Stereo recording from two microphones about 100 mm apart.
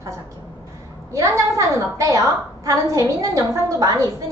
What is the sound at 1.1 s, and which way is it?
A woman's voice, 30° right (ahead or behind).